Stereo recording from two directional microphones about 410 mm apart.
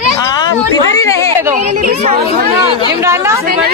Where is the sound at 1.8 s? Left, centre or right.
Right.